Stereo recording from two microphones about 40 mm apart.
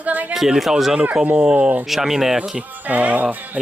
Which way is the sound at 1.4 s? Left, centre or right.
Right.